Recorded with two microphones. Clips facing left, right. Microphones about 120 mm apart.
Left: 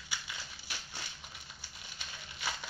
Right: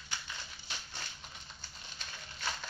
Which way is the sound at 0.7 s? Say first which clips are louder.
Even; 10° left (ahead or behind).